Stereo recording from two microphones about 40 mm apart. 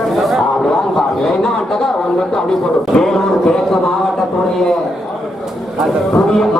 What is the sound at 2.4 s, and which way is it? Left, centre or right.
Speech, centre.